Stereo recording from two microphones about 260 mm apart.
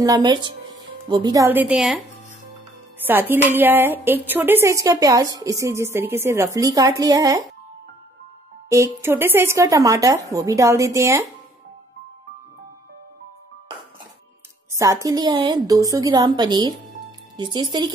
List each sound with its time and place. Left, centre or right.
0.0 s speech: centre
3.1 s a woman's voice: centre
8.6 s a woman's voice: centre
14.8 s a woman's voice: centre